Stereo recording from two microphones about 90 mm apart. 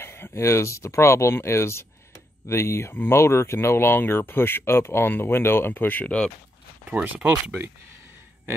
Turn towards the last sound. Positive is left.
turn(degrees=-15)  # may be behind; listen again after turning